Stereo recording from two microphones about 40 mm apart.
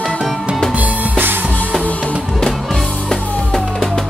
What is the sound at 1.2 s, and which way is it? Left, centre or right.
Music, right.